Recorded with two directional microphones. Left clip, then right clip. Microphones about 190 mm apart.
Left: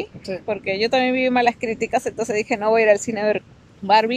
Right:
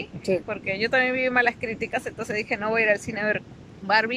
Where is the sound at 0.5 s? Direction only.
20° left (ahead or behind).